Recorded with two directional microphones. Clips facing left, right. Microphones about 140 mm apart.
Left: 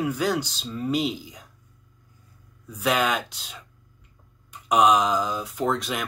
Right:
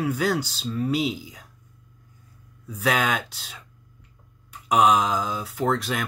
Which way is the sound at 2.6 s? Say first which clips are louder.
Even; centre (ahead or behind).